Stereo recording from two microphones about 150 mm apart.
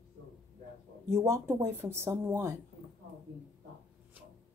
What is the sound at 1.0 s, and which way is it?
Speech, 20° right (ahead or behind).